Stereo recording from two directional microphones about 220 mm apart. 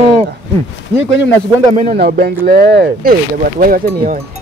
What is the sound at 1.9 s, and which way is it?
Speech, 45° right (ahead or behind).